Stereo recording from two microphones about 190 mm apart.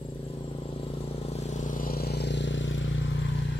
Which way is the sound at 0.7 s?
35° left (ahead or behind).